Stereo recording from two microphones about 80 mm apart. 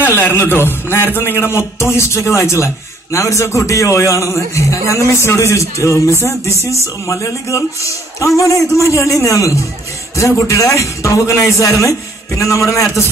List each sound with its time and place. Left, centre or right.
0.0 s a man's voice: left